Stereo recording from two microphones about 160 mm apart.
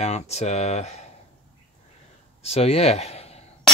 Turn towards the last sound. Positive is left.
turn(degrees=40)  # may be behind; listen again after turning